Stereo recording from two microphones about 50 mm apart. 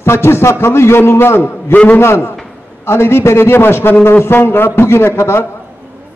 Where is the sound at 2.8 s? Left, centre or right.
Left.